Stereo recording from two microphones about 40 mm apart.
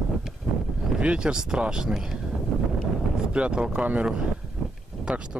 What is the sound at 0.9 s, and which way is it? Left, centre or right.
Speech, right.